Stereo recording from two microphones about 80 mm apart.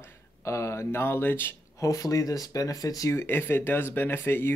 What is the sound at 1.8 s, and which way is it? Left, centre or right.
Speech, left.